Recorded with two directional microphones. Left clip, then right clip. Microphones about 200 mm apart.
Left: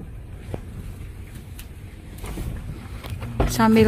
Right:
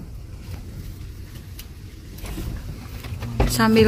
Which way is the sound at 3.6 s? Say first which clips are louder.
Even; centre (ahead or behind).